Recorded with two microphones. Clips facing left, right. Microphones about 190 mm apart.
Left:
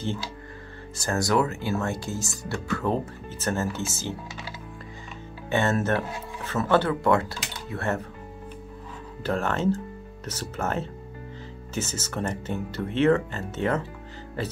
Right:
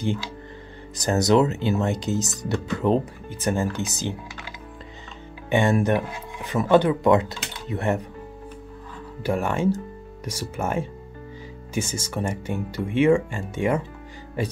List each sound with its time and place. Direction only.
0.9 s speech: 20° right (ahead or behind)
5.5 s speech: 15° right (ahead or behind)
9.2 s speech: 10° right (ahead or behind)